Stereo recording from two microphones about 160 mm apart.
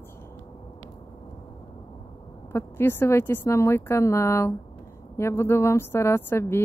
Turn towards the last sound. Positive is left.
turn(degrees=15)  # may be behind; listen again after turning